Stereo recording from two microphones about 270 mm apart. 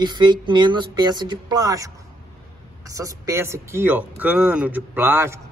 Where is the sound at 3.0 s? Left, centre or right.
Centre.